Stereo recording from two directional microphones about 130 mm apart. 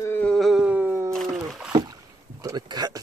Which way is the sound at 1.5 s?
5° right (ahead or behind).